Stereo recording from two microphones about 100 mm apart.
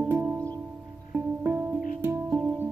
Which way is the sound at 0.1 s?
20° right (ahead or behind).